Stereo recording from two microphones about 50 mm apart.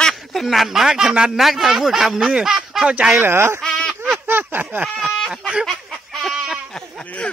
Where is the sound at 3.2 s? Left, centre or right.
Right.